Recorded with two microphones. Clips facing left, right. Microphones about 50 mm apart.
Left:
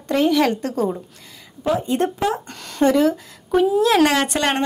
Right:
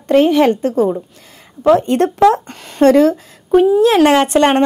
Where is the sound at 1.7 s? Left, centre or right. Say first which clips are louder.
Right 8 dB; right.